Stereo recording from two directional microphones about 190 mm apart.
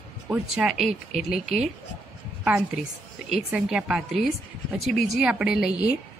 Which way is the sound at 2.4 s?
5° right (ahead or behind).